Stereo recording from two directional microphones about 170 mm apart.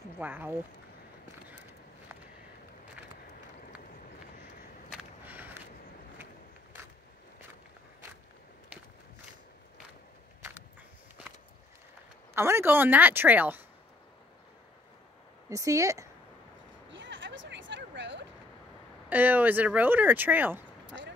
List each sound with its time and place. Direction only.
0.2 s speech: 10° right (ahead or behind)
4.9 s a sound: 10° right (ahead or behind)
12.4 s speech: 15° right (ahead or behind)
15.5 s speech: 20° right (ahead or behind)
16.9 s a sound: 90° right
19.0 s speech: 10° right (ahead or behind)
20.8 s basketball bounce: 90° right